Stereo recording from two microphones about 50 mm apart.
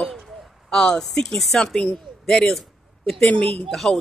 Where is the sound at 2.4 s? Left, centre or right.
Centre.